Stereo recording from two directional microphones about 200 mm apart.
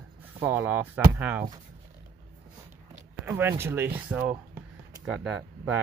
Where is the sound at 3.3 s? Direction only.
10° right (ahead or behind).